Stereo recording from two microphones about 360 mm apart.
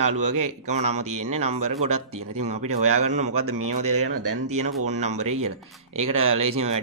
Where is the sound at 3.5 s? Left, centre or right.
Right.